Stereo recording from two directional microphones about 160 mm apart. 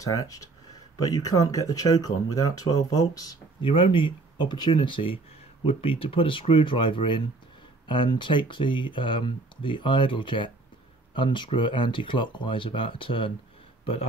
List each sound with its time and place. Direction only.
0.0 s speech: 20° left (ahead or behind)